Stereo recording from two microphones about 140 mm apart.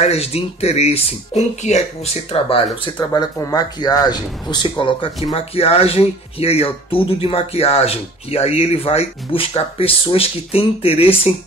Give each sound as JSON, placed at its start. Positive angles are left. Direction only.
{"t": 0.0, "sound": "speech", "side_deg": 45}
{"t": 2.3, "sound": "speech", "side_deg": 40}
{"t": 3.2, "sound": "speech", "side_deg": 25}